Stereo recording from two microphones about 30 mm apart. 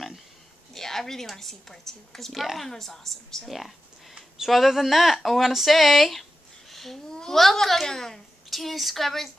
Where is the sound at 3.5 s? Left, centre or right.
Centre.